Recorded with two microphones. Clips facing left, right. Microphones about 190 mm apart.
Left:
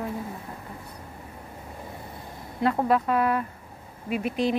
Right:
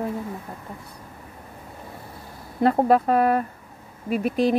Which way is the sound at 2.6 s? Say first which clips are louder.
Right 5 dB; 40° right (ahead or behind).